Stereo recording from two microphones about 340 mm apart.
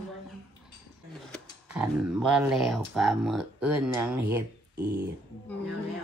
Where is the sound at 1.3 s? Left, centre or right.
Centre.